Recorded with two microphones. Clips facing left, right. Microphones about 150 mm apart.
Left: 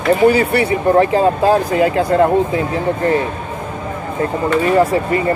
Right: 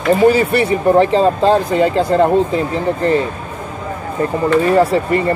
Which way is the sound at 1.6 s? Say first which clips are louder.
Even; 5° left (ahead or behind).